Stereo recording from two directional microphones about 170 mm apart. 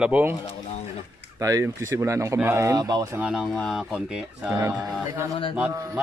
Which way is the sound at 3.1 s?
5° right (ahead or behind).